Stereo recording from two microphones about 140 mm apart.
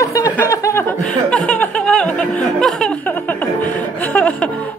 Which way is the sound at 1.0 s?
10° left (ahead or behind).